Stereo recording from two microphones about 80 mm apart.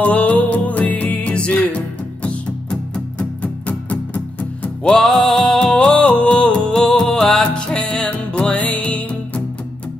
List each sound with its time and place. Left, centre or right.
0.0 s music: centre
4.9 s music: centre